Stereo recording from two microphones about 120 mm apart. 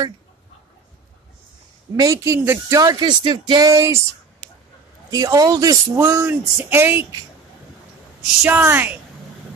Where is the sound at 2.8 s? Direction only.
35° right (ahead or behind).